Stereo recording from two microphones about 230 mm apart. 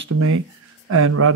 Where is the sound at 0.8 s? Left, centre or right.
Right.